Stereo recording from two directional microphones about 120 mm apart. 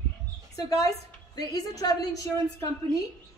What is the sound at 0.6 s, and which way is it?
A woman's voice, 30° left (ahead or behind).